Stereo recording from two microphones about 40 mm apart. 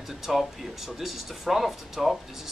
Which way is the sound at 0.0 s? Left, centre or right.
Centre.